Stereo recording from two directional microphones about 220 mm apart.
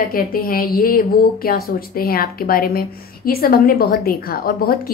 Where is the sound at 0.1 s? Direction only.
40° left (ahead or behind).